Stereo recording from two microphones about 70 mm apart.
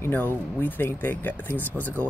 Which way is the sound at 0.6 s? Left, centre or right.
Left.